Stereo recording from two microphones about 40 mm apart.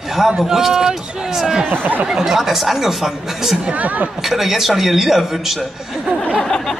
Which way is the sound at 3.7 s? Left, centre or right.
Right.